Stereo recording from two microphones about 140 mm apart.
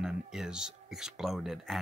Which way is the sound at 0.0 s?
5° right (ahead or behind).